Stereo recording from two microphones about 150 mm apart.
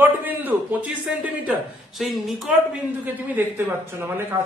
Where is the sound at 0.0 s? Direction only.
15° right (ahead or behind).